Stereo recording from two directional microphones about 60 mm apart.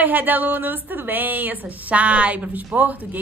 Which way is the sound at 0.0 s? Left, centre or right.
Right.